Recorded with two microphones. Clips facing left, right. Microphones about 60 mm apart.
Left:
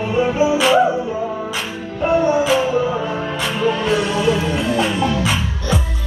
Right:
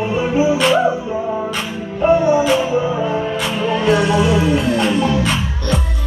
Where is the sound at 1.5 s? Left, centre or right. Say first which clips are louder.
Right 2 dB; centre.